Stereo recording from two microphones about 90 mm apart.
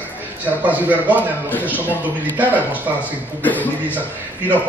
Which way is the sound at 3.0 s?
20° left (ahead or behind).